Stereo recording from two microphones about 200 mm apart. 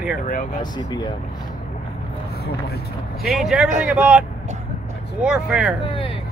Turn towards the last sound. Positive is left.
turn(degrees=25)  # may be behind; listen again after turning